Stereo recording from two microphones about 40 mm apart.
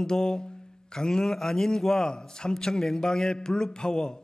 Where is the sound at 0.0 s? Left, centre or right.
Centre.